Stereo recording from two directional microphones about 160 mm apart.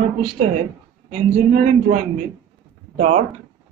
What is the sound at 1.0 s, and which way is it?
Speech, 50° right (ahead or behind).